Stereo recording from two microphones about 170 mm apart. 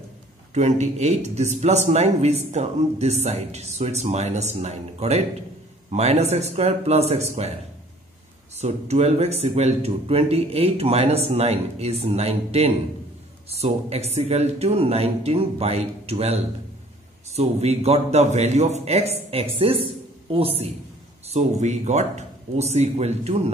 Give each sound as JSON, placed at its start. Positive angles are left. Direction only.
{"t": 0.6, "sound": "speech", "side_deg": -40}
{"t": 8.5, "sound": "speech", "side_deg": -40}
{"t": 13.8, "sound": "speech", "side_deg": -40}